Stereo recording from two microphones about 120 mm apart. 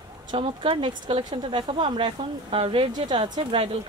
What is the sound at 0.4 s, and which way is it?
Speech, 50° right (ahead or behind).